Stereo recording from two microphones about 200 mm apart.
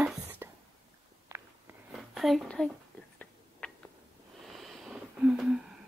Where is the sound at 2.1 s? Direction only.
Centre (ahead or behind).